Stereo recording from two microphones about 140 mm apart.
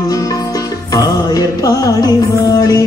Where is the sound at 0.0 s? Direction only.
25° left (ahead or behind).